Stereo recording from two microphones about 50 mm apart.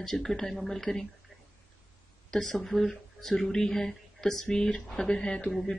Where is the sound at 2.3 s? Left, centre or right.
Centre.